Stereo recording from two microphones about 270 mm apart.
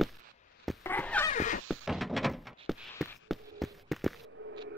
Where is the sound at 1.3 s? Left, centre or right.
Left.